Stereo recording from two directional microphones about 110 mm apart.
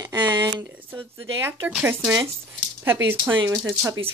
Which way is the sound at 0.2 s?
40° right (ahead or behind).